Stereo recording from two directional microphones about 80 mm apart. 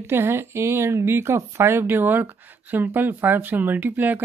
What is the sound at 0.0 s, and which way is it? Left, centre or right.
Speech, right.